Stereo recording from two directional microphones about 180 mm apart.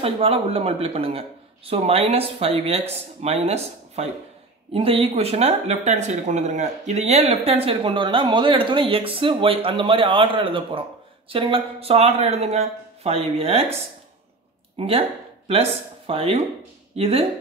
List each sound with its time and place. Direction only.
0.0 s speech: 30° right (ahead or behind)
14.8 s speech: 30° right (ahead or behind)